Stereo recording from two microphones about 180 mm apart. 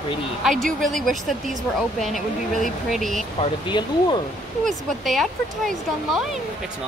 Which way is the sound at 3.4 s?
25° left (ahead or behind).